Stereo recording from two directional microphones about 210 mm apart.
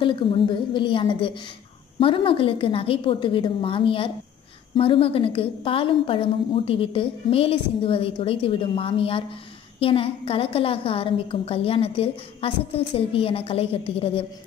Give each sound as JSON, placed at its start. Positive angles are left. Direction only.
{"t": 0.0, "sound": "a woman's voice", "side_deg": 25}